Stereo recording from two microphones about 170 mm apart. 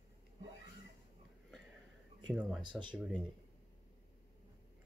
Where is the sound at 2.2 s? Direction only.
5° right (ahead or behind).